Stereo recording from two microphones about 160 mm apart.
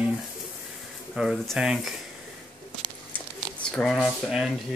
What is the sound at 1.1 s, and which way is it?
Speech, 5° right (ahead or behind).